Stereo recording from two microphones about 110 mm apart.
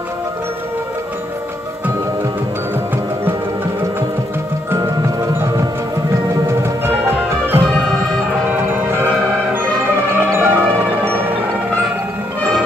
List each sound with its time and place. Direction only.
4.6 s music: 25° right (ahead or behind)
7.2 s music: 20° right (ahead or behind)
10.1 s music: 20° right (ahead or behind)